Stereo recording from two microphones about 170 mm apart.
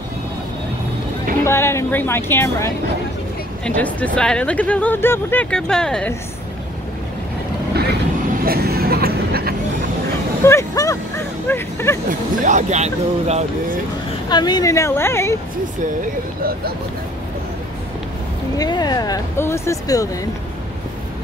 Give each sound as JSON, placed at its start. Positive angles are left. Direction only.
{"t": 1.4, "sound": "speech", "side_deg": 15}
{"t": 8.5, "sound": "vehicle", "side_deg": -65}
{"t": 10.4, "sound": "a sound", "side_deg": 20}
{"t": 12.1, "sound": "speech", "side_deg": -45}
{"t": 14.3, "sound": "speech", "side_deg": 25}
{"t": 18.6, "sound": "speech", "side_deg": 25}